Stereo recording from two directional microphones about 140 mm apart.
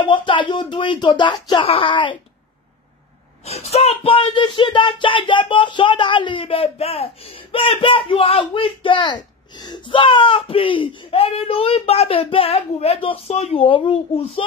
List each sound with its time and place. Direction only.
0.0 s speech: 35° left (ahead or behind)
3.4 s speech: 50° left (ahead or behind)